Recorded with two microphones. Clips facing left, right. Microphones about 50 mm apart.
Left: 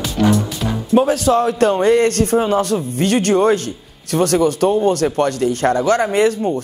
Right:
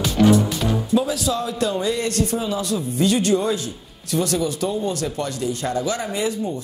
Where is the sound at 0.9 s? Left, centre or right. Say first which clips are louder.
Left 10 dB; left.